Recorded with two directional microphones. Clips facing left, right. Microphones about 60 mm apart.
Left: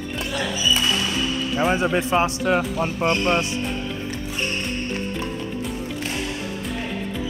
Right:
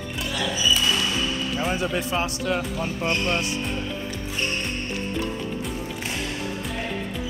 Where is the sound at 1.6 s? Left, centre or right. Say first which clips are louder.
Left 7 dB; left.